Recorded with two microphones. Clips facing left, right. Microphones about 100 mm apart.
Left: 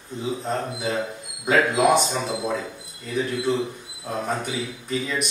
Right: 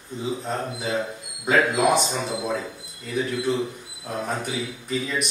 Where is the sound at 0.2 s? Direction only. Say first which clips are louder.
Left 1 dB; centre (ahead or behind).